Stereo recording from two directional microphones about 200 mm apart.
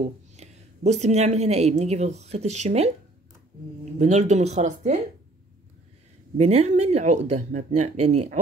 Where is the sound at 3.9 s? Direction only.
35° right (ahead or behind).